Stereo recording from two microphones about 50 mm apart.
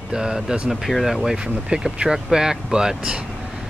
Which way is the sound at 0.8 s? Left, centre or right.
Centre.